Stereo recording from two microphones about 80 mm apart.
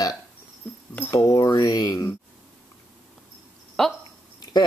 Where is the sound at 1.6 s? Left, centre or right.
Left.